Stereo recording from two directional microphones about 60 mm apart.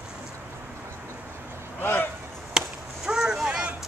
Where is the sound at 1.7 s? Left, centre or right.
Left.